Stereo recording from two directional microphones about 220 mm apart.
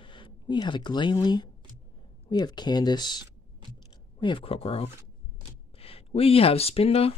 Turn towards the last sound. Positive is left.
turn(degrees=25)  # may be behind; listen again after turning